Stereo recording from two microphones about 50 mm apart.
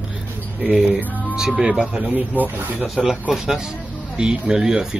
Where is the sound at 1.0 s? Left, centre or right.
Left.